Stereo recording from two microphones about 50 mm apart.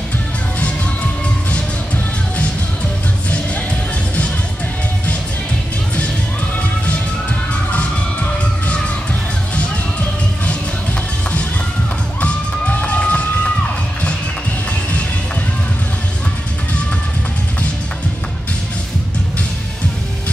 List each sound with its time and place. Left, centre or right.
12.2 s music: left